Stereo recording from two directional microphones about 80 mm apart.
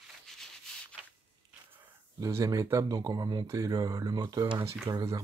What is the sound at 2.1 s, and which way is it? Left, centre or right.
Speech, right.